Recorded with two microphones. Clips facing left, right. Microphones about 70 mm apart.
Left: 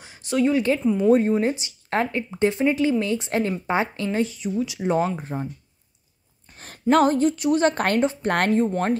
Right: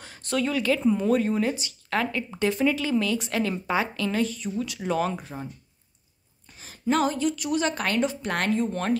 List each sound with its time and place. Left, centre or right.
0.0 s a sound: centre
0.5 s speech: left
4.8 s speech: left
6.5 s a woman's voice: left
8.0 s a woman's voice: left
8.3 s speech: left
8.6 s speech: left